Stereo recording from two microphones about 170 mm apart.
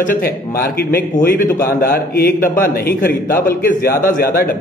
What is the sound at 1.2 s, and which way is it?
A man's voice, 60° left (ahead or behind).